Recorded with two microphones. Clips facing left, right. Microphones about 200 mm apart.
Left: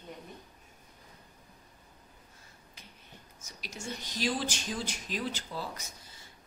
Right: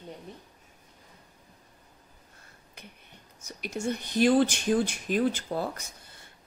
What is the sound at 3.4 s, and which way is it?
Speech, 60° right (ahead or behind).